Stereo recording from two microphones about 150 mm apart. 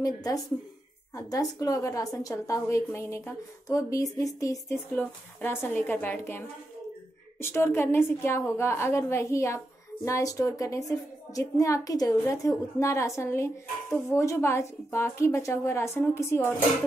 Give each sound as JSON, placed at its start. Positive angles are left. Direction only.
{"t": 0.0, "sound": "a woman's voice", "side_deg": 25}